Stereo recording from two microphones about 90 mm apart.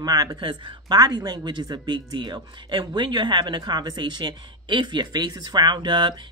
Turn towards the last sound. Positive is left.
turn(degrees=-55)  # may be behind; listen again after turning